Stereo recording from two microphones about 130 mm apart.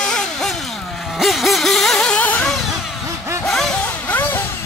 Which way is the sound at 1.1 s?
Centre (ahead or behind).